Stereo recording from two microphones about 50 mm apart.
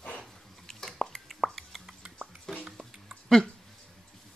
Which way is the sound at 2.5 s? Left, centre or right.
Centre.